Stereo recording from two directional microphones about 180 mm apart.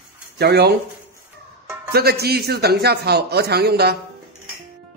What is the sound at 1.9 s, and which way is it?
A man's voice, 60° right (ahead or behind).